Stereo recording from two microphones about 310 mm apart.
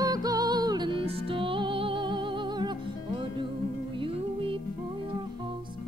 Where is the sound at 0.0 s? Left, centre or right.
Centre.